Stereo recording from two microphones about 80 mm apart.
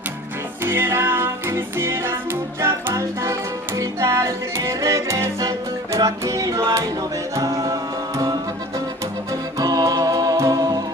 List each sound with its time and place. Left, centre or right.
0.7 s music: right
9.6 s music: right